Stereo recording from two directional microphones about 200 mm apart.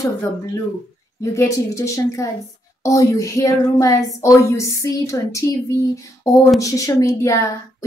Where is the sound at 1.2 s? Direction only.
15° left (ahead or behind).